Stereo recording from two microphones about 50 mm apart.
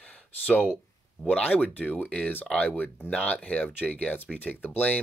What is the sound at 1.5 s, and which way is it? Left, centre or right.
Speech, left.